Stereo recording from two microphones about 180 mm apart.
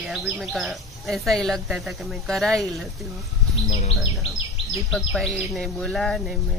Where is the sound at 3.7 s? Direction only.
35° left (ahead or behind).